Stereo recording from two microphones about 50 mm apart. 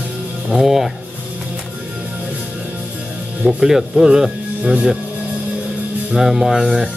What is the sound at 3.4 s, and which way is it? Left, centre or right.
Speech, centre.